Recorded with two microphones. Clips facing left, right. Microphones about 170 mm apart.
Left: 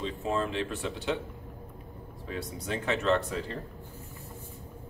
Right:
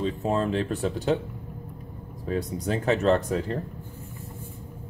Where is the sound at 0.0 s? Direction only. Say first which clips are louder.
Right 5 dB; 40° right (ahead or behind).